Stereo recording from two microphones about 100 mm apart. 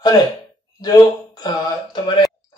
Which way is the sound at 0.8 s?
40° left (ahead or behind).